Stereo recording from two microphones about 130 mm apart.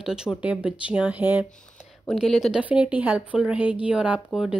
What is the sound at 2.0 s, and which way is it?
Speech, centre (ahead or behind).